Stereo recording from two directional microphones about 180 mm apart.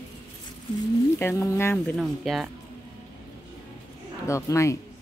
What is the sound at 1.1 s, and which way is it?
Speech, 15° left (ahead or behind).